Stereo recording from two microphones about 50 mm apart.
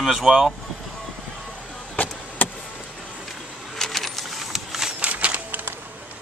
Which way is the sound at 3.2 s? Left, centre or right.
Centre.